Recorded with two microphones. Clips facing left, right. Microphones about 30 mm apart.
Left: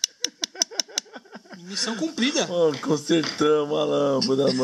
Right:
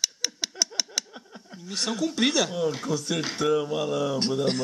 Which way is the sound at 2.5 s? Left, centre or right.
Centre.